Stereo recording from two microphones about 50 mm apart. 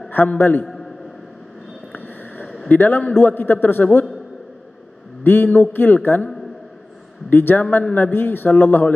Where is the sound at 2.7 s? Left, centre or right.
Left.